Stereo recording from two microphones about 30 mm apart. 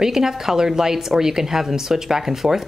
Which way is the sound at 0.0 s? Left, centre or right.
Centre.